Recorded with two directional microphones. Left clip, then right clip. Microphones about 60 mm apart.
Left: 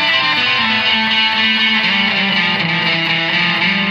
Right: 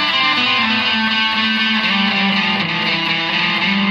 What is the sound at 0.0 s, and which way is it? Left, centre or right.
Music, left.